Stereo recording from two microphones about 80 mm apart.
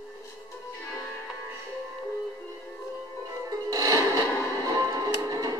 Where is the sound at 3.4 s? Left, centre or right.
Right.